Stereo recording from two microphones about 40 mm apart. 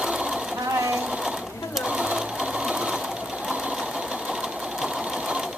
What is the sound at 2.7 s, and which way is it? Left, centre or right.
Sewing machine, right.